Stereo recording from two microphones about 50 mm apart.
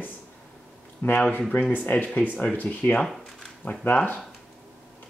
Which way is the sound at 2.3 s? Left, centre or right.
Left.